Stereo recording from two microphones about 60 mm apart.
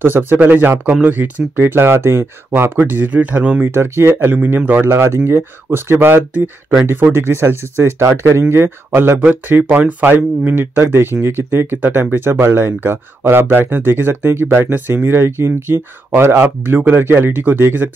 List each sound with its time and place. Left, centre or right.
0.0 s speech: right
3.6 s speech: right
4.3 s speech: right
4.8 s speech: right
9.2 s speech: right